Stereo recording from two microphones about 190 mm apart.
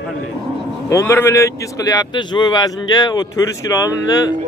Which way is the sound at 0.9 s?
15° left (ahead or behind).